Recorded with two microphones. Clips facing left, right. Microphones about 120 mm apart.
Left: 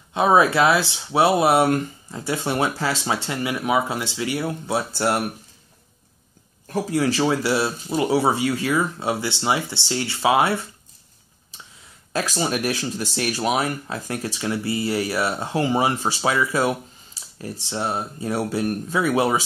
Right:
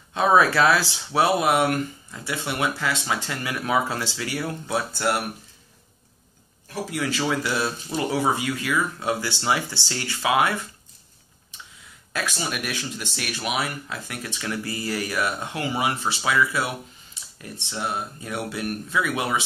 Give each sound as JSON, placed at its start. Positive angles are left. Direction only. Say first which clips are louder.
{"t": 0.1, "sound": "speech", "louder": "left 2 dB", "side_deg": 20}
{"t": 6.7, "sound": "speech", "louder": "left 6 dB", "side_deg": 35}
{"t": 12.1, "sound": "speech", "louder": "left 5 dB", "side_deg": 35}